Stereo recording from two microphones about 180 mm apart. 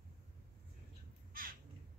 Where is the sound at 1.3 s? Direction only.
50° right (ahead or behind).